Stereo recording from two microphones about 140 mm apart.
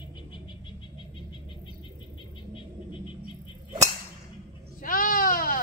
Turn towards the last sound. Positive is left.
turn(degrees=90)